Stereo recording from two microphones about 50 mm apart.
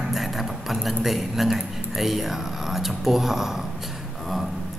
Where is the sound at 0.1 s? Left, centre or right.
Centre.